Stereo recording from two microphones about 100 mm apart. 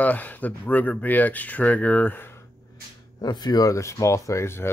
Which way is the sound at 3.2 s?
45° left (ahead or behind).